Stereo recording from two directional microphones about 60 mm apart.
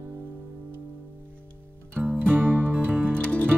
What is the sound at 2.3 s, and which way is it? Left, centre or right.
Music, right.